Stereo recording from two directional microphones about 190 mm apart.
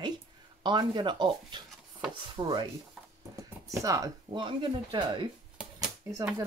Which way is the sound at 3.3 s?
15° right (ahead or behind).